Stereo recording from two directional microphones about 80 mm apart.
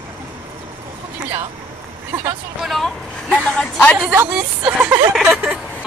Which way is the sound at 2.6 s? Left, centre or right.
Centre.